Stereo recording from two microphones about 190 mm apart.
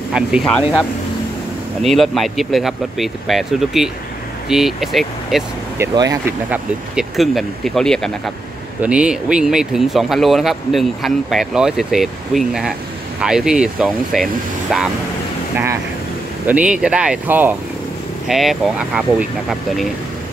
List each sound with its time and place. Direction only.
0.1 s speech: centre (ahead or behind)
1.8 s speech: centre (ahead or behind)
5.8 s speech: 15° right (ahead or behind)
6.5 s speech: centre (ahead or behind)
15.5 s speech: 15° right (ahead or behind)